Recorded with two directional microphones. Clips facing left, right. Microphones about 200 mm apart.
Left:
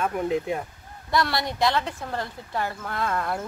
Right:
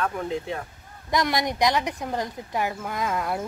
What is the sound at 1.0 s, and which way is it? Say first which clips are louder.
Speech: right 1 dB; 15° right (ahead or behind).